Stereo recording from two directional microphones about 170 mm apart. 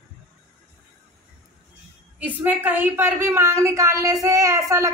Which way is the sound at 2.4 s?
10° right (ahead or behind).